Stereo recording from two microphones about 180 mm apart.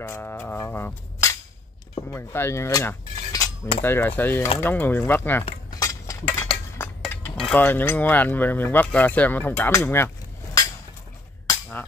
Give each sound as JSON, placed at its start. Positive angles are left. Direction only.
{"t": 0.0, "sound": "cutlery", "side_deg": 10}